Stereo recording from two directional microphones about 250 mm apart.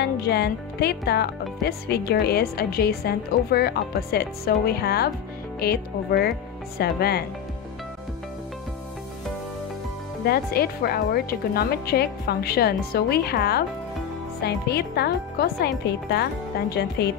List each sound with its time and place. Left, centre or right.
0.0 s speech: left
10.2 s speech: left